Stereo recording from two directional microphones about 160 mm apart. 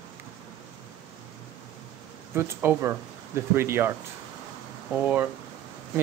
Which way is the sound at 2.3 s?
15° right (ahead or behind).